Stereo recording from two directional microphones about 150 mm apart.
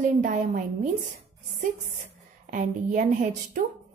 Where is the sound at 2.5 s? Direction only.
55° right (ahead or behind).